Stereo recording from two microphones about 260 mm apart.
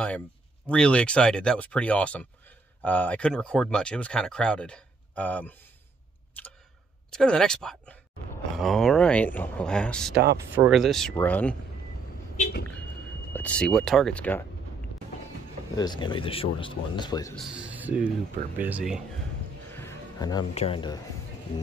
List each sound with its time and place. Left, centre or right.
0.7 s speech: centre
6.4 s a sound: centre
7.1 s speech: centre
13.3 s speech: centre
15.7 s speech: centre
17.5 s a sound: centre
18.6 s speech: centre
19.7 s speech: centre